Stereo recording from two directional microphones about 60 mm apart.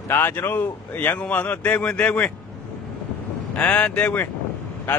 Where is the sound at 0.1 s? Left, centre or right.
Left.